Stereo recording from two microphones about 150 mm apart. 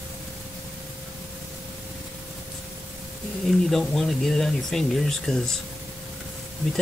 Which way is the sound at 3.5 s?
Centre (ahead or behind).